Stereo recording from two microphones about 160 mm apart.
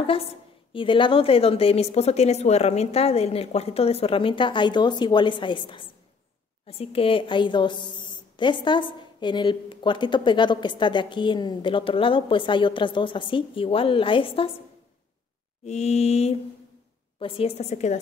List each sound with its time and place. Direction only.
0.0 s a sound: 35° left (ahead or behind)
0.7 s a woman's voice: 30° left (ahead or behind)
15.6 s a woman's voice: 45° left (ahead or behind)